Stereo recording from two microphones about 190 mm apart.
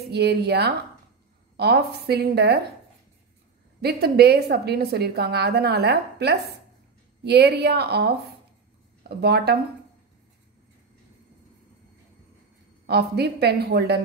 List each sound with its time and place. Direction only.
0.1 s a woman's voice: 60° right (ahead or behind)
3.8 s a woman's voice: 55° right (ahead or behind)
9.2 s a woman's voice: 60° right (ahead or behind)
12.8 s a woman's voice: 60° right (ahead or behind)